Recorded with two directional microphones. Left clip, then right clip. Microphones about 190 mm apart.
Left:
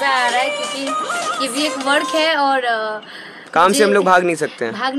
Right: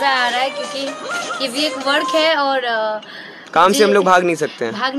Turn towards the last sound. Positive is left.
turn(degrees=5)  # may be behind; listen again after turning